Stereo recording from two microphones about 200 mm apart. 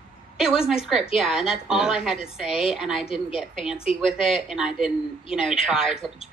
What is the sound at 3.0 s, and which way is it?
Speech, 30° left (ahead or behind).